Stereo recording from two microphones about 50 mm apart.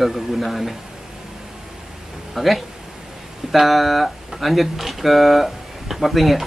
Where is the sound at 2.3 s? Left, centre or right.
Centre.